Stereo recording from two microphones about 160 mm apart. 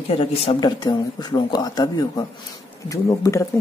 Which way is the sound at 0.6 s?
25° left (ahead or behind).